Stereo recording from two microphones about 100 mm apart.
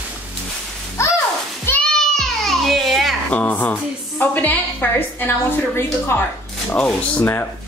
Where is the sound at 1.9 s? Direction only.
5° left (ahead or behind).